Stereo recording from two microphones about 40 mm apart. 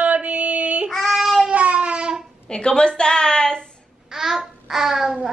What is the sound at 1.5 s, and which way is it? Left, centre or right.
Cat, right.